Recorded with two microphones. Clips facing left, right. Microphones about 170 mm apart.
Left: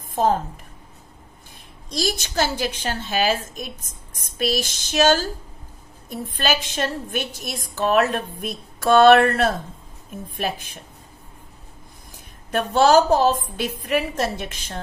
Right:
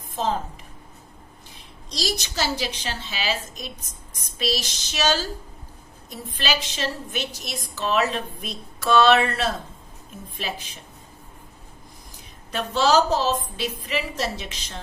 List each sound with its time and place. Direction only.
0.1 s a woman's voice: 50° left (ahead or behind)
1.9 s a woman's voice: 50° left (ahead or behind)
12.4 s a woman's voice: 55° left (ahead or behind)